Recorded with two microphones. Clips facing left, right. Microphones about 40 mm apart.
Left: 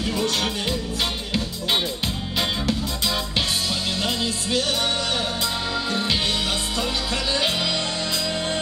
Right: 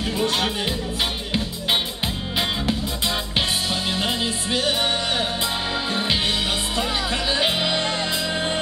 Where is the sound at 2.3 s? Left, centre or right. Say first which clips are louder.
Even; centre.